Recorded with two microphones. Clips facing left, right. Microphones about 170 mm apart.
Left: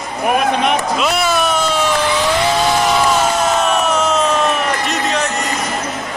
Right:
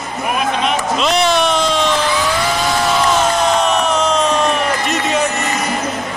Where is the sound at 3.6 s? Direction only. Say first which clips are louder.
Even; 5° left (ahead or behind).